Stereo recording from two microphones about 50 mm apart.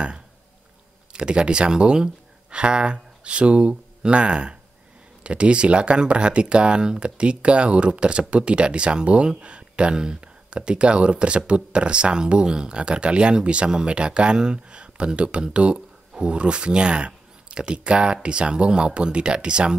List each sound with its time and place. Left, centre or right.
1.1 s speech: centre